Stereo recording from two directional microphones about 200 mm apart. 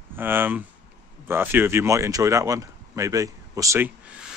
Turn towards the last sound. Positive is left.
turn(degrees=-10)  # may be behind; listen again after turning